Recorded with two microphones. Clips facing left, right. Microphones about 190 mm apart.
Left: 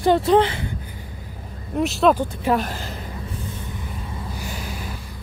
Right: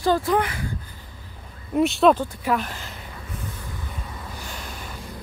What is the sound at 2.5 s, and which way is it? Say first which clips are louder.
Speech: left 4 dB; 35° left (ahead or behind).